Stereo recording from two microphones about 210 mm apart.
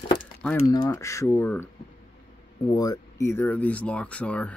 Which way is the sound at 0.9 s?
15° left (ahead or behind).